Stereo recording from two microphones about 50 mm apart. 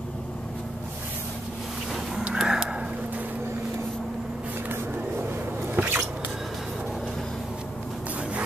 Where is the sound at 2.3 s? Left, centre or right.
Centre.